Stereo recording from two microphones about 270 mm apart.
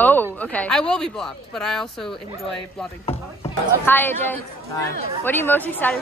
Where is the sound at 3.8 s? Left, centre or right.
Centre.